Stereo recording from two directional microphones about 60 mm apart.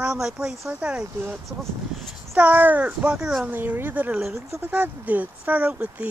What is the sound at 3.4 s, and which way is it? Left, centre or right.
Speech, right.